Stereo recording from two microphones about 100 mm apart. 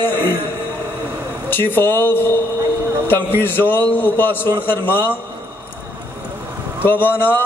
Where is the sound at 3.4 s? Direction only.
20° left (ahead or behind).